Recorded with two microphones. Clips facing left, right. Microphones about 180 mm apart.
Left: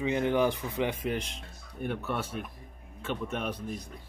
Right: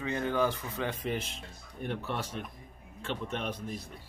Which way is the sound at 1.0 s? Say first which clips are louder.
Left 2 dB; centre (ahead or behind).